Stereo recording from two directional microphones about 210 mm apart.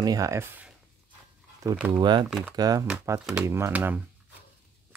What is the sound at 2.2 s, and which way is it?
Speech, centre (ahead or behind).